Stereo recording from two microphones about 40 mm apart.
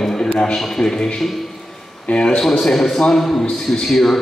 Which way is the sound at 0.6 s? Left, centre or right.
Centre.